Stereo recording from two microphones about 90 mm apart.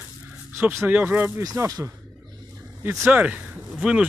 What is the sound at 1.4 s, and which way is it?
Speech, 40° right (ahead or behind).